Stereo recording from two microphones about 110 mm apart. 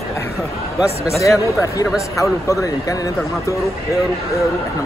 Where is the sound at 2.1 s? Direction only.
30° left (ahead or behind).